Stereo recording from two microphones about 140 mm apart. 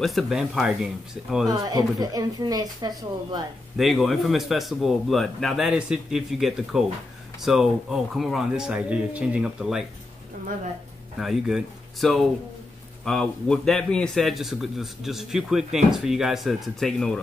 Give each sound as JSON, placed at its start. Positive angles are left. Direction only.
{"t": 0.0, "sound": "a man's voice", "side_deg": 0}
{"t": 1.5, "sound": "speech", "side_deg": -25}
{"t": 3.7, "sound": "a man's voice", "side_deg": 0}
{"t": 11.1, "sound": "a man's voice", "side_deg": 0}